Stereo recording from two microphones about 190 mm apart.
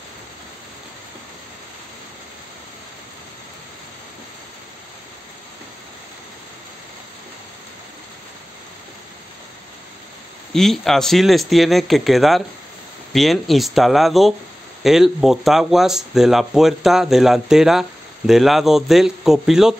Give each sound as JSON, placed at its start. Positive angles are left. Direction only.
{"t": 10.5, "sound": "speech", "side_deg": 0}